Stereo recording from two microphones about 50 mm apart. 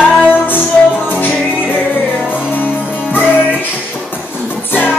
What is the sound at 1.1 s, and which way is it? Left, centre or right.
Music, left.